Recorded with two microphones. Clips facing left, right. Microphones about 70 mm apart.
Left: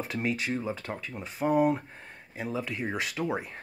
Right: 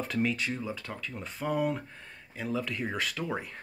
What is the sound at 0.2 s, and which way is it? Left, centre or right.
Speech, left.